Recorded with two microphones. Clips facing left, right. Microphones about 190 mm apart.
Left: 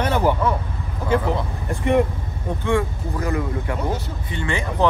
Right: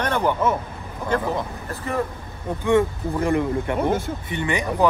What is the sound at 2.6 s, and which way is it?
Speech, 25° right (ahead or behind).